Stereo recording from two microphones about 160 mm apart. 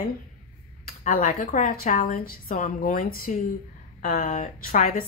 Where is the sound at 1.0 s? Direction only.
55° left (ahead or behind).